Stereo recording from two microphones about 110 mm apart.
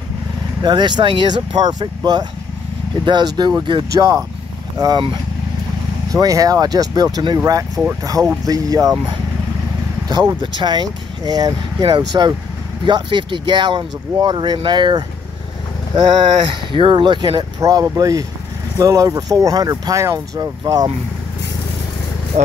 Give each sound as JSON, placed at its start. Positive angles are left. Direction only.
{"t": 0.6, "sound": "speech", "side_deg": -40}
{"t": 6.1, "sound": "speech", "side_deg": -35}
{"t": 10.0, "sound": "speech", "side_deg": -40}
{"t": 16.7, "sound": "speech", "side_deg": -45}